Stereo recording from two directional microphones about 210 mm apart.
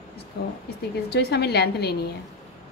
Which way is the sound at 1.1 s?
50° left (ahead or behind).